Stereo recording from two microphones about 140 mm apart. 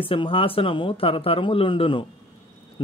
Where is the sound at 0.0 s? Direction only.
40° left (ahead or behind).